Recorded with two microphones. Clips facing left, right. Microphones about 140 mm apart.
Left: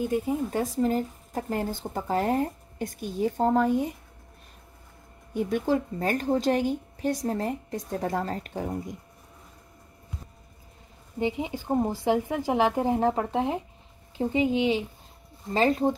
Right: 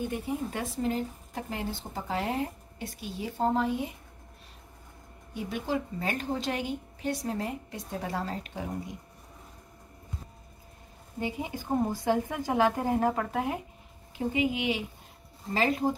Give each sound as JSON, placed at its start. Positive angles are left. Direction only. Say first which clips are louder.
{"t": 0.1, "sound": "speech", "louder": "left 6 dB", "side_deg": 40}
{"t": 5.3, "sound": "speech", "louder": "left 6 dB", "side_deg": 45}
{"t": 11.1, "sound": "a woman's voice", "louder": "left 5 dB", "side_deg": 25}